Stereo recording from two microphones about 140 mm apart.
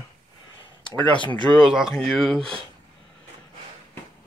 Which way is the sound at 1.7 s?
5° right (ahead or behind).